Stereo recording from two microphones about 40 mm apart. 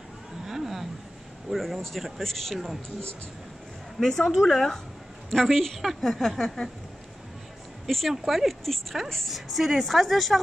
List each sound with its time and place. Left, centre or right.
0.5 s a sound: centre
1.5 s a woman's voice: centre
4.0 s a woman's voice: centre
5.8 s a woman's voice: centre
7.8 s a woman's voice: centre